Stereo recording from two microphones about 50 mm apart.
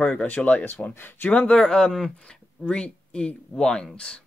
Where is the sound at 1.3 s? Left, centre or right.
Left.